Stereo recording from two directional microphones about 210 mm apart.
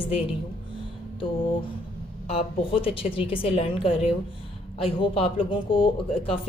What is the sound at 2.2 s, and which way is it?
Speech, 25° left (ahead or behind).